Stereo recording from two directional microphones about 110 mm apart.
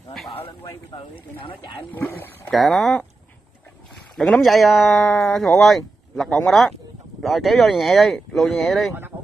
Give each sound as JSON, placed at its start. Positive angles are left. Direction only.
{"t": 0.3, "sound": "speech", "side_deg": 55}
{"t": 2.0, "sound": "speech", "side_deg": 20}
{"t": 2.5, "sound": "speech", "side_deg": 0}
{"t": 4.2, "sound": "speech", "side_deg": 0}